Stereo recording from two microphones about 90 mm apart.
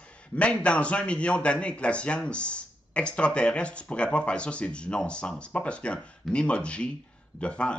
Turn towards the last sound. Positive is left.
turn(degrees=10)  # may be behind; listen again after turning